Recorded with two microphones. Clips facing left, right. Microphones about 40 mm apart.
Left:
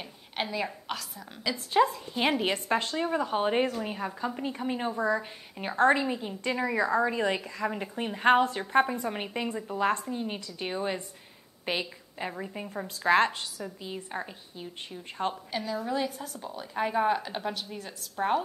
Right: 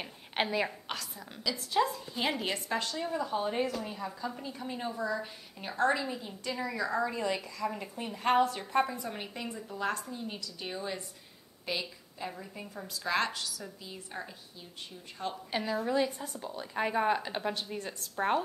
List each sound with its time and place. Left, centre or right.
0.0 s a sound: centre
0.7 s speech: centre
1.4 s a woman's voice: left
7.9 s a woman's voice: left
15.5 s a woman's voice: centre
15.9 s speech: centre